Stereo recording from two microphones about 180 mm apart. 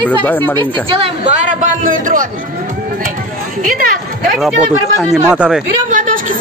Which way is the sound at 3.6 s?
50° right (ahead or behind).